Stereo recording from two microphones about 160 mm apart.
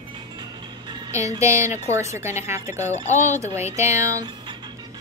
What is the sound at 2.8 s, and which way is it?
Speech, 45° left (ahead or behind).